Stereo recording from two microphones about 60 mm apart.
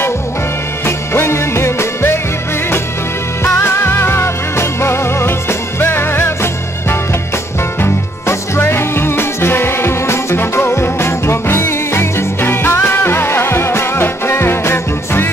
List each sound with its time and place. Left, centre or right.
0.8 s music: left
3.4 s music: left